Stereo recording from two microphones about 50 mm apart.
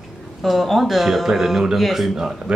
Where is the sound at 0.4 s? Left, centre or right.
Centre.